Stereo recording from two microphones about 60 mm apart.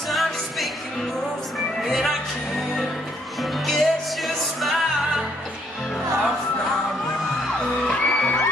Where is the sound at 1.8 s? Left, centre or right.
Centre.